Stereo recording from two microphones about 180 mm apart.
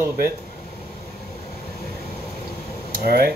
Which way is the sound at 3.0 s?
60° right (ahead or behind).